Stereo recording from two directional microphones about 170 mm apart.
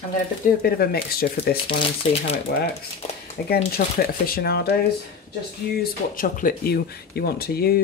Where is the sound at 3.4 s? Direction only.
70° left (ahead or behind).